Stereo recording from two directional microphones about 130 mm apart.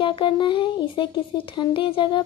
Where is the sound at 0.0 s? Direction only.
40° left (ahead or behind).